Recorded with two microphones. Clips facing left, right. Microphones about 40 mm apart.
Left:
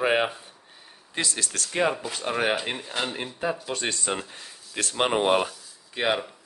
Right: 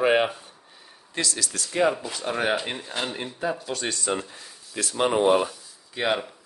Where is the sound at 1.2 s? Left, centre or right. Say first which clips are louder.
Even; left.